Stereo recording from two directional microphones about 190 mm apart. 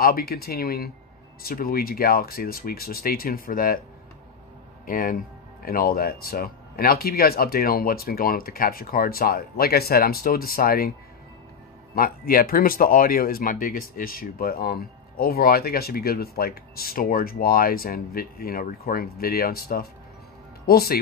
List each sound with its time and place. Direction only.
0.0 s speech: 50° left (ahead or behind)
4.8 s speech: 50° left (ahead or behind)
11.9 s speech: 50° left (ahead or behind)